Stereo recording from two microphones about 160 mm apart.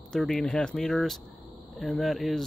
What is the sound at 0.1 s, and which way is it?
Speech, 5° left (ahead or behind).